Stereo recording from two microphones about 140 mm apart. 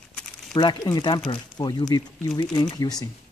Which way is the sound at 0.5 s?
30° left (ahead or behind).